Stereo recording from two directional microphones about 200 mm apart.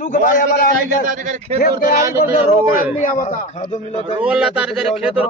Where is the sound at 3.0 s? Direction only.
40° left (ahead or behind).